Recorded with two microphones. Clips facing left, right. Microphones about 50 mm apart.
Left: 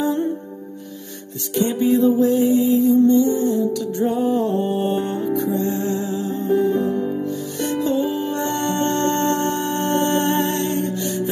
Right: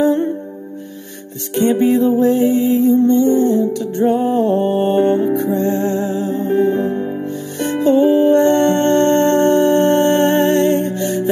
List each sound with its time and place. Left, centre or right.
0.0 s music: right
1.5 s music: right